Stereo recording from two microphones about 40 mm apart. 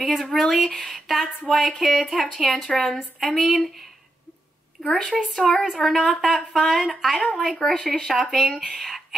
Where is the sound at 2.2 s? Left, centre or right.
Centre.